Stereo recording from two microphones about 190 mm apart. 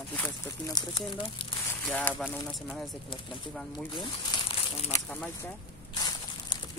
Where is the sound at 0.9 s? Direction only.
30° left (ahead or behind).